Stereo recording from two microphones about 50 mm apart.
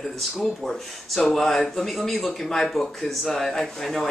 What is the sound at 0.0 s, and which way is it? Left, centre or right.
Speech, centre.